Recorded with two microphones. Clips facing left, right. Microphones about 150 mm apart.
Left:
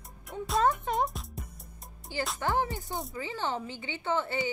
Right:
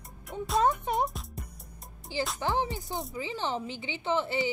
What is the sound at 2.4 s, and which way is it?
Speech, 20° right (ahead or behind).